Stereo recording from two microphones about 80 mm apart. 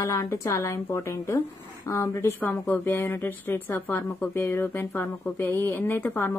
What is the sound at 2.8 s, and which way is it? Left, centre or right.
Speech, left.